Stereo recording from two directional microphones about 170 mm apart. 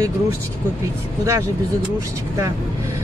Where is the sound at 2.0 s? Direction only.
20° right (ahead or behind).